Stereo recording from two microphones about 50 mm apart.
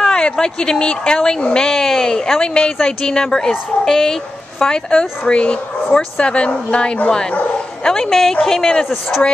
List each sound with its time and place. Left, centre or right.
0.0 s speech: centre